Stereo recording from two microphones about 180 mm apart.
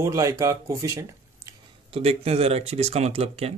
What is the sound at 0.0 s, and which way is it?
Speech, 15° right (ahead or behind).